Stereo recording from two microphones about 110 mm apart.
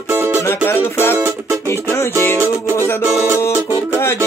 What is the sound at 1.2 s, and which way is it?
Music, 25° right (ahead or behind).